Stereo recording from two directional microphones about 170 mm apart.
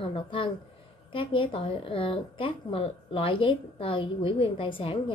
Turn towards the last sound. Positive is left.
turn(degrees=30)  # may be behind; listen again after turning